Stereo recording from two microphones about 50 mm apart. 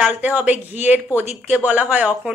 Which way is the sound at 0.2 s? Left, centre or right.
Right.